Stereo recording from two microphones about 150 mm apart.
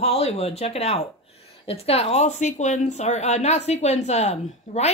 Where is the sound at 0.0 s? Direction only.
40° left (ahead or behind).